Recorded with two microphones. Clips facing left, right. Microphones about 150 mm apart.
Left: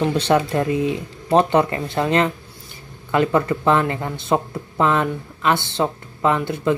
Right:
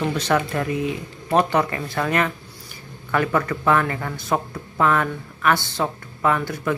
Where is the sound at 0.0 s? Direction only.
30° left (ahead or behind).